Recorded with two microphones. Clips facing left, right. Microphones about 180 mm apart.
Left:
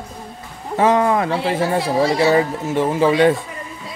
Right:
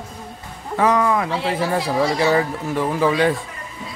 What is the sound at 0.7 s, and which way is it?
Speech, 25° left (ahead or behind).